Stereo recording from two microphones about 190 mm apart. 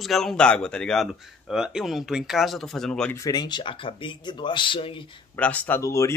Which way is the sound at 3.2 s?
20° left (ahead or behind).